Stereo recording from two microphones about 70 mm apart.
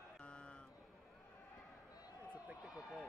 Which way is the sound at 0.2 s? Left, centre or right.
Centre.